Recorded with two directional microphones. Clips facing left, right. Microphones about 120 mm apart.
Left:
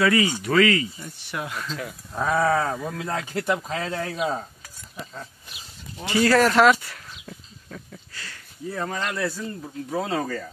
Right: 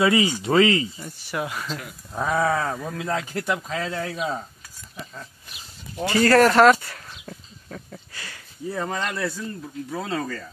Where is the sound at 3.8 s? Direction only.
15° left (ahead or behind).